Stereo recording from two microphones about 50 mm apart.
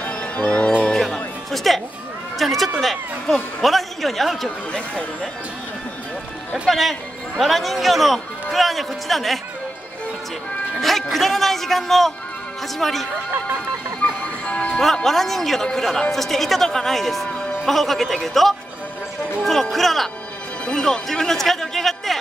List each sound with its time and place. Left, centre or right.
0.0 s music: left
0.9 s music: centre
2.3 s a woman's voice: centre
4.7 s speech: centre
6.7 s a woman's voice: centre
10.8 s a woman's voice: centre
14.4 s music: left
15.0 s a woman's voice: centre
20.6 s speech: centre